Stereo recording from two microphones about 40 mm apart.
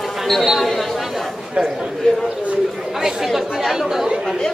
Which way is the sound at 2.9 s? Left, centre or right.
Centre.